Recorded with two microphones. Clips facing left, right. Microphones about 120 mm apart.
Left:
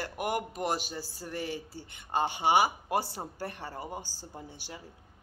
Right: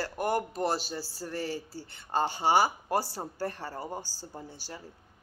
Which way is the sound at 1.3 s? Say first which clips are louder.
Right 1 dB; 35° right (ahead or behind).